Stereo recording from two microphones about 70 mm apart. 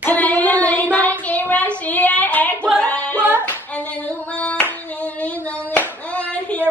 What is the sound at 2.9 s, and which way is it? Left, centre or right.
Singing, left.